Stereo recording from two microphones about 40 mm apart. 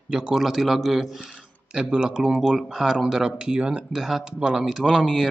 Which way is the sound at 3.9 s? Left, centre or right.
Centre.